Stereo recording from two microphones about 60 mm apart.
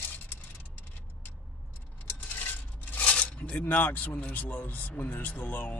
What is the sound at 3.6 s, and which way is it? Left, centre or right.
Speech, left.